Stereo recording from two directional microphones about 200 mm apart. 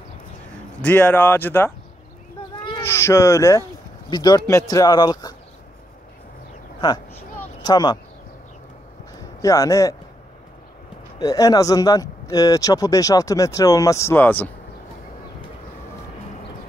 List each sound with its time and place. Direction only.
0.8 s speech: 10° left (ahead or behind)
2.8 s speech: 10° left (ahead or behind)
7.6 s speech: 20° left (ahead or behind)
9.4 s speech: 15° left (ahead or behind)
11.1 s speech: 20° left (ahead or behind)